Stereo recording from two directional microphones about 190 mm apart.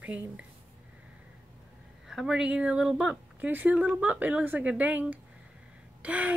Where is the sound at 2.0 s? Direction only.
Centre (ahead or behind).